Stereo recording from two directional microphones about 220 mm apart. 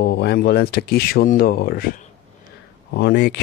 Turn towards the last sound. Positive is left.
turn(degrees=50)  # may be behind; listen again after turning